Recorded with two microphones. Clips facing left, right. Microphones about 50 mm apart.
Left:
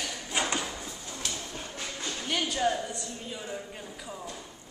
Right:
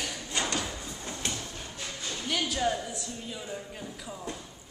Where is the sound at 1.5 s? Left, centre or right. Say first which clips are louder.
Left 2 dB; left.